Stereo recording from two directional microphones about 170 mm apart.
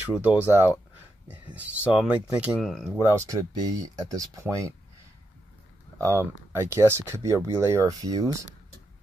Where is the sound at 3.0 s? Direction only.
20° right (ahead or behind).